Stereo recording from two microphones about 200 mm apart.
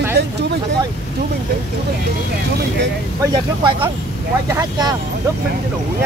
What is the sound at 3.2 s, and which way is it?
Speech, 15° right (ahead or behind).